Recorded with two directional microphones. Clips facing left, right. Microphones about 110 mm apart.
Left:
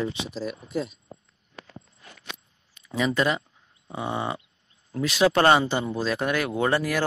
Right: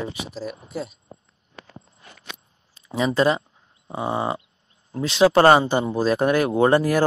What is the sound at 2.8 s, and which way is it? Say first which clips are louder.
Speech: right 4 dB; 30° right (ahead or behind).